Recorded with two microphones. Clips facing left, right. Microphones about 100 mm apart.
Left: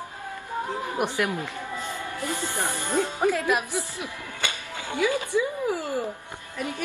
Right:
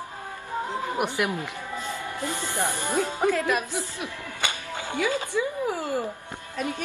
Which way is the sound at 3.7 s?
20° right (ahead or behind).